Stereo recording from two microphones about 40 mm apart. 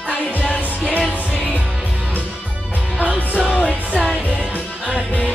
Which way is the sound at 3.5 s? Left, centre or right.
Left.